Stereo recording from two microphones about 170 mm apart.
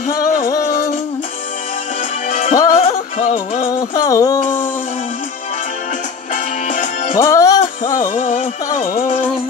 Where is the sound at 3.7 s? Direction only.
20° left (ahead or behind).